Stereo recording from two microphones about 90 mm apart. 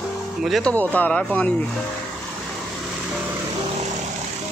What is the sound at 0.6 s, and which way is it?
Speech, 15° left (ahead or behind).